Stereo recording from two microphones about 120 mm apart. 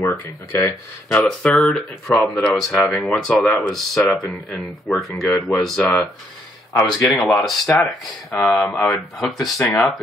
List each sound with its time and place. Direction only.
0.0 s speech: 20° left (ahead or behind)
1.0 s speech: 5° left (ahead or behind)